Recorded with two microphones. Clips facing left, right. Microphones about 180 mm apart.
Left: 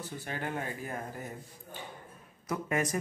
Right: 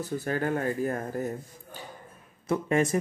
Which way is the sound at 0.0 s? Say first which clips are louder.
Right 9 dB; 40° right (ahead or behind).